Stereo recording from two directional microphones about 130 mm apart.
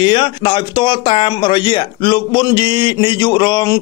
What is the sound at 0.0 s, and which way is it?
A man's voice, 40° left (ahead or behind).